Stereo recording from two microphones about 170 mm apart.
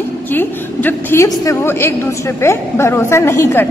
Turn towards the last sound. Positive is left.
turn(degrees=15)  # may be behind; listen again after turning